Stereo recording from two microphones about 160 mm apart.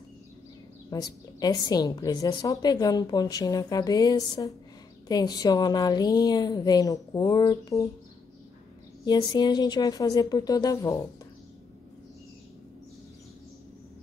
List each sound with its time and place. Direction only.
0.8 s a woman's voice: 25° left (ahead or behind)
9.0 s a woman's voice: 25° left (ahead or behind)